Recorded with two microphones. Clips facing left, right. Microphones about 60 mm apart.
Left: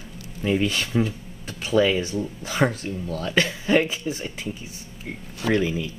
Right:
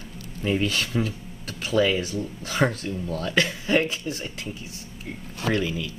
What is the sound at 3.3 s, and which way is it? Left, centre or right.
Speech, centre.